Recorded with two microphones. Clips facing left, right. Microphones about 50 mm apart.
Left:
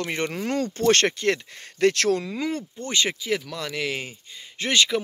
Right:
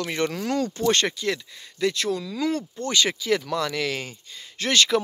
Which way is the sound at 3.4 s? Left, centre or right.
Centre.